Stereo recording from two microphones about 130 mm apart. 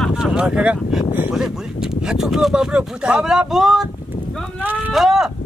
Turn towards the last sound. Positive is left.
turn(degrees=0)  # may be behind; listen again after turning